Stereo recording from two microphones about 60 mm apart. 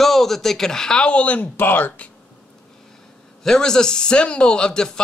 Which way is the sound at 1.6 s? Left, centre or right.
Left.